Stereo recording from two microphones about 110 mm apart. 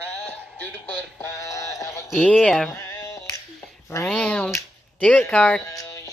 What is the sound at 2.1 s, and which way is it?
Speech, 10° left (ahead or behind).